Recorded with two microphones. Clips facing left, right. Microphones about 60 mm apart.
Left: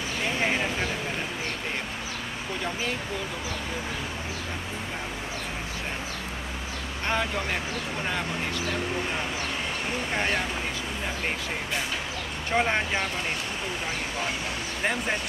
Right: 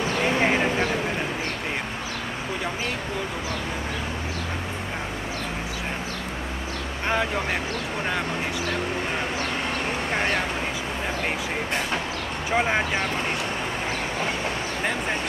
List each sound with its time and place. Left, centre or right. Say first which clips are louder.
0.4 s a sound: right 3 dB; right
7.1 s speech: right 3 dB; centre
12.4 s speech: right 2 dB; centre